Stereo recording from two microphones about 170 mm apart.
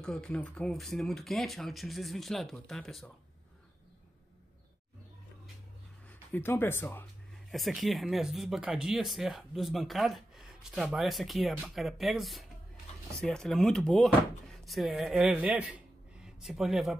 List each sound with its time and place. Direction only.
0.0 s speech: 5° left (ahead or behind)
6.3 s speech: 15° left (ahead or behind)
7.5 s speech: centre (ahead or behind)